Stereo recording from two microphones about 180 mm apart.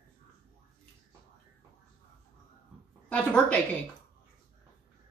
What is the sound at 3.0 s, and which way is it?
Speech, 5° left (ahead or behind).